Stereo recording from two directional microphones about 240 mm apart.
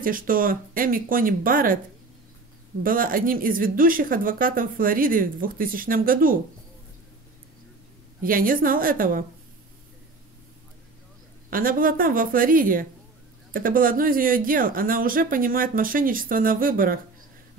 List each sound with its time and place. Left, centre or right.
0.0 s speech: right
2.8 s speech: right
8.2 s speech: right
11.5 s speech: right